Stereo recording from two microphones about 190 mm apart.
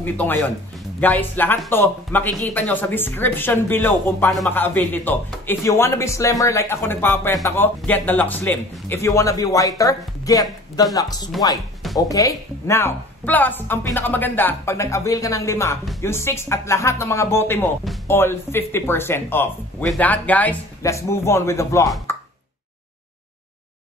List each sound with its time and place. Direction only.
0.0 s speech: 10° left (ahead or behind)